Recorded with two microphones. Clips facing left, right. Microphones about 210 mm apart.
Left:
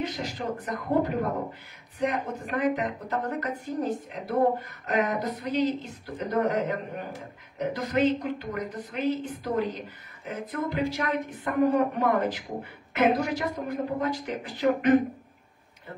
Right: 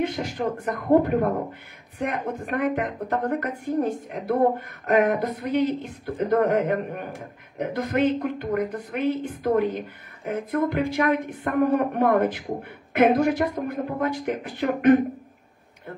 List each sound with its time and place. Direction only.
0.0 s a woman's voice: 55° right (ahead or behind)